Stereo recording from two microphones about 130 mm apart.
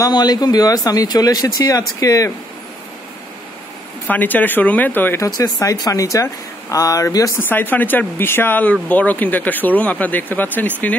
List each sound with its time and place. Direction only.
0.0 s speech: 30° left (ahead or behind)
4.1 s speech: 15° left (ahead or behind)
7.4 s speech: 15° left (ahead or behind)